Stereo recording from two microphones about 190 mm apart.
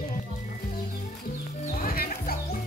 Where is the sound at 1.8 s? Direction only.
50° left (ahead or behind).